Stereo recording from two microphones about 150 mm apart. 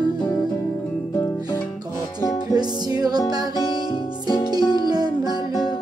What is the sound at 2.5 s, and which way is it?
Music, 25° right (ahead or behind).